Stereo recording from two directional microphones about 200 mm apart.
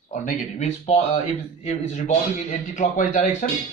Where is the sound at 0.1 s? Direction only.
40° left (ahead or behind).